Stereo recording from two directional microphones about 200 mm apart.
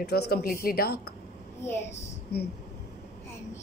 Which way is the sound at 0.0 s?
55° left (ahead or behind).